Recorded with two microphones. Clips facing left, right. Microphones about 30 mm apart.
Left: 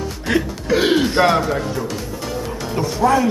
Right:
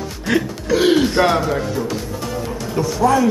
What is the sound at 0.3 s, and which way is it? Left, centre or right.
Speech, centre.